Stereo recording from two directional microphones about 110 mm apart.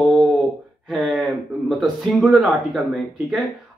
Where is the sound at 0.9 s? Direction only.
Centre (ahead or behind).